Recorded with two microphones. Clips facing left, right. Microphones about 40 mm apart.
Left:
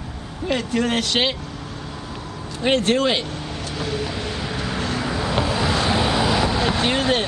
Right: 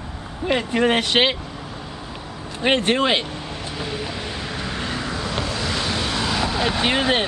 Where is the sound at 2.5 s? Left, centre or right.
Centre.